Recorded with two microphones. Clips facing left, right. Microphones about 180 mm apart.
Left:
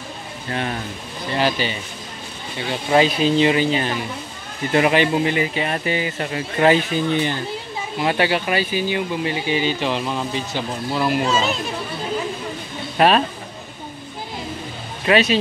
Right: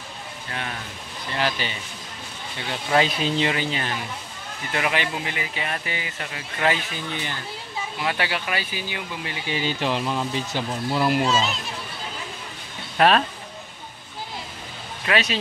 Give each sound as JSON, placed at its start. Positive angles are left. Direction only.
{"t": 0.5, "sound": "speech", "side_deg": 35}
{"t": 2.7, "sound": "speech", "side_deg": 20}
{"t": 4.7, "sound": "speech", "side_deg": 35}
{"t": 9.8, "sound": "speech", "side_deg": 0}
{"t": 12.9, "sound": "speech", "side_deg": 15}
{"t": 15.1, "sound": "speech", "side_deg": 25}